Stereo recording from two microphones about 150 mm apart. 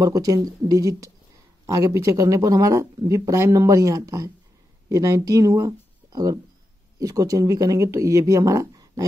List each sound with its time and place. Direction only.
0.0 s speech: 25° right (ahead or behind)